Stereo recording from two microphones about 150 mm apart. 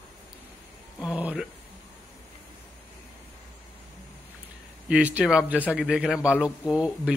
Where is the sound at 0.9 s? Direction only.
5° right (ahead or behind).